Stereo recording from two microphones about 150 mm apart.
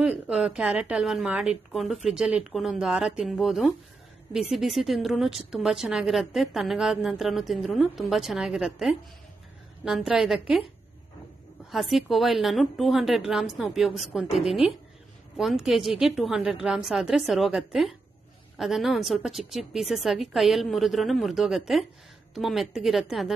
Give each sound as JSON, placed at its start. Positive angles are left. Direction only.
{"t": 0.0, "sound": "a woman's voice", "side_deg": -5}
{"t": 11.7, "sound": "a woman's voice", "side_deg": 0}